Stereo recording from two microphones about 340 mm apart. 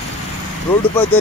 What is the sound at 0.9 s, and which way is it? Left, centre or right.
Speech, centre.